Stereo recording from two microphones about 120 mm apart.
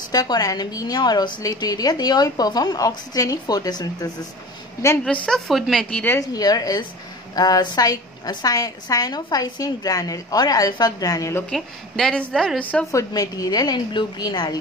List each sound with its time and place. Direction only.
0.1 s a woman's voice: 30° left (ahead or behind)
5.0 s a woman's voice: 5° left (ahead or behind)
6.0 s a woman's voice: 30° left (ahead or behind)
11.5 s a woman's voice: 5° left (ahead or behind)
12.9 s a woman's voice: 30° left (ahead or behind)